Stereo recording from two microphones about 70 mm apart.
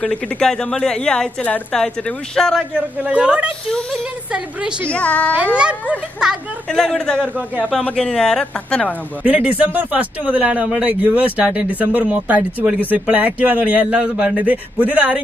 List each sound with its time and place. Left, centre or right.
0.0 s a woman's voice: centre
3.0 s speech: centre
4.9 s a child's voice: centre
5.4 s speech: centre
6.7 s a man's voice: centre
7.3 s speech: right
7.9 s a woman's voice: centre
9.2 s speech: centre